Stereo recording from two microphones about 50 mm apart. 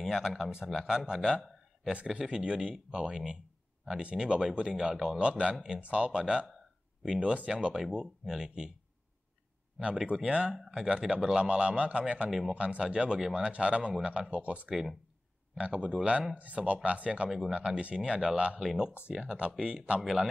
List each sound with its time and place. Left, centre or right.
0.0 s a man's voice: centre
5.2 s speech: centre
9.8 s speech: centre
10.5 s speech: centre
10.9 s speech: centre
12.3 s speech: centre
12.5 s speech: right
13.5 s speech: right
16.3 s speech: right
18.6 s speech: centre
19.0 s speech: right